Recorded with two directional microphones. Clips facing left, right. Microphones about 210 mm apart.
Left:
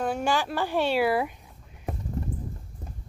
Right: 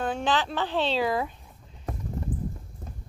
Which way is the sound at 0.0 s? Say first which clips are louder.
Left 1 dB; 10° left (ahead or behind).